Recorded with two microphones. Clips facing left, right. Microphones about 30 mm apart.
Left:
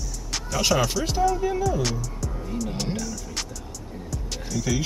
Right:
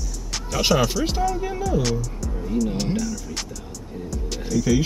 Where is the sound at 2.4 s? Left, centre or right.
Centre.